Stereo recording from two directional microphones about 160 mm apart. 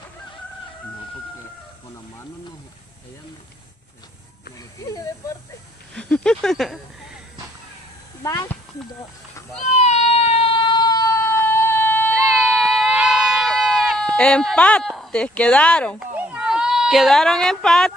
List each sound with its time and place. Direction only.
5.9 s a sound: 5° left (ahead or behind)
8.2 s speech: 20° left (ahead or behind)
9.7 s a sound: 45° left (ahead or behind); by 12.2 s 10° left (ahead or behind)
12.4 s baby cry: centre (ahead or behind)
14.1 s speech: 5° left (ahead or behind)
16.0 s cat: 10° right (ahead or behind)